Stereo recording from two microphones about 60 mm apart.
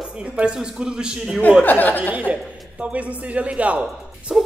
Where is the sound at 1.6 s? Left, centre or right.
Left.